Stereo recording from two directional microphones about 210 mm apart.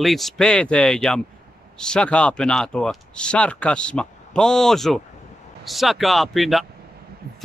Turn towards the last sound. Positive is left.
turn(degrees=0)  # may be behind; listen again after turning